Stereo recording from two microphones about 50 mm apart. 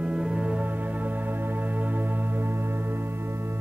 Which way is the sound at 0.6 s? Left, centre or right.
Right.